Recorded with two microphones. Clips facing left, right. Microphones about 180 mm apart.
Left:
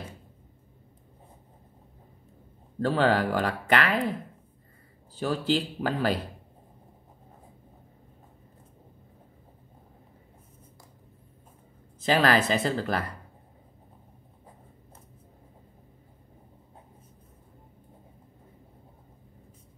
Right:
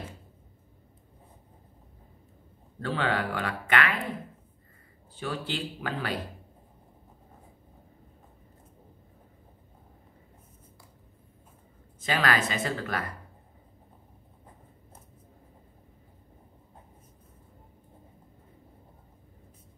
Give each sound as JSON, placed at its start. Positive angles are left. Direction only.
{"t": 2.8, "sound": "speech", "side_deg": 40}
{"t": 5.1, "sound": "speech", "side_deg": 40}
{"t": 12.1, "sound": "speech", "side_deg": 30}